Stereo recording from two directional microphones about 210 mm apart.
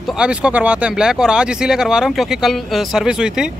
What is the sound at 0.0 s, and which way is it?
Speech, 5° right (ahead or behind).